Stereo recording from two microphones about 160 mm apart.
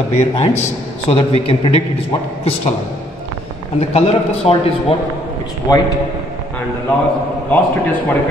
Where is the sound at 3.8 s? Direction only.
40° left (ahead or behind).